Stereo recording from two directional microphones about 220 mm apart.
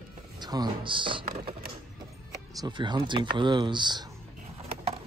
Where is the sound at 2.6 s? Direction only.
20° right (ahead or behind).